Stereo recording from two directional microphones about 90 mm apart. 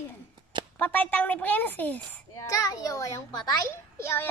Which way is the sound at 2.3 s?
40° left (ahead or behind).